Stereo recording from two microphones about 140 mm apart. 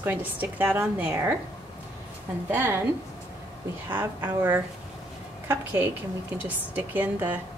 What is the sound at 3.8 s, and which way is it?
A woman's voice, 15° right (ahead or behind).